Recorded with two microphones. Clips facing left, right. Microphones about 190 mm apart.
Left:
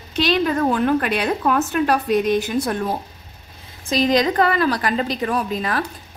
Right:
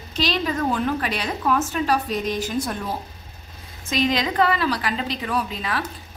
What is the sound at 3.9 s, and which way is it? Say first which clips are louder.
A woman's voice: left 5 dB; 40° left (ahead or behind).